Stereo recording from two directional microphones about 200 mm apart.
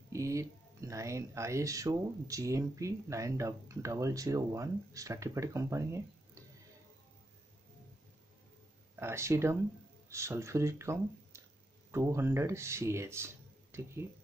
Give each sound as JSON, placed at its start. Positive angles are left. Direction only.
{"t": 0.1, "sound": "speech", "side_deg": -15}
{"t": 8.9, "sound": "speech", "side_deg": -10}